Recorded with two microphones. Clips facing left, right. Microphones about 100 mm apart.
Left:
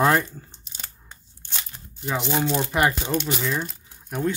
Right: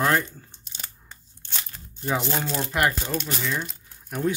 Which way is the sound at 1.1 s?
15° left (ahead or behind).